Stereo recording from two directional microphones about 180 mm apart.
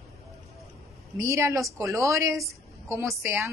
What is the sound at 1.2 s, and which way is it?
A woman's voice, 15° right (ahead or behind).